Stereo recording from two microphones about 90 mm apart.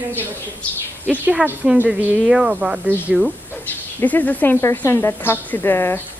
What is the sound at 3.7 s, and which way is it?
Bird, 20° left (ahead or behind).